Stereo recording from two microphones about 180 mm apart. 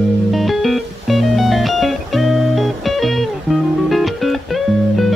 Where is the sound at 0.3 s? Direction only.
Centre (ahead or behind).